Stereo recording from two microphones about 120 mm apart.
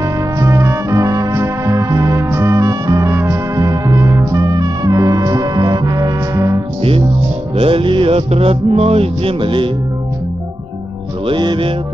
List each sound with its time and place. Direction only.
0.0 s music: 25° right (ahead or behind)
7.5 s music: 50° right (ahead or behind)
11.2 s music: 40° right (ahead or behind)